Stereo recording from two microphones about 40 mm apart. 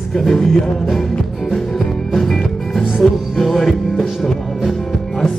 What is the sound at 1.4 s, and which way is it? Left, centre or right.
Music, centre.